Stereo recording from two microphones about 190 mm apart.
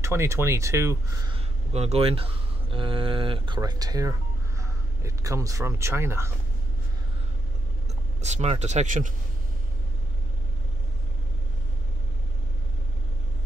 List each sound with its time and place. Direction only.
0.0 s speech: 15° right (ahead or behind)
1.3 s speech: 35° right (ahead or behind); by 6.3 s 15° right (ahead or behind)
8.2 s speech: 35° right (ahead or behind)